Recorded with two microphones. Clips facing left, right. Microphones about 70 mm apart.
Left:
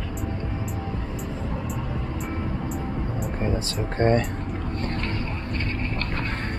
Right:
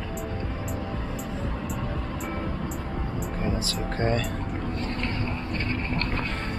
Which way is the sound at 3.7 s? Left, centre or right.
Left.